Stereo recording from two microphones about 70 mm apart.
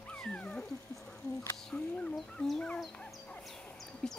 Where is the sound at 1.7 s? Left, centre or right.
Centre.